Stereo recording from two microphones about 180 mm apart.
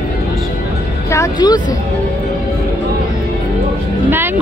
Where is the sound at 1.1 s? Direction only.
20° left (ahead or behind).